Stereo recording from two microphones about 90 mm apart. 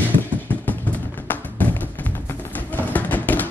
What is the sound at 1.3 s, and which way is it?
Music, 20° left (ahead or behind).